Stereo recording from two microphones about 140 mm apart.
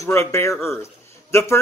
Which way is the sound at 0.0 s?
20° left (ahead or behind).